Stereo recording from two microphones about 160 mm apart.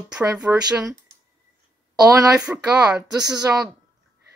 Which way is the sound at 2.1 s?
25° right (ahead or behind).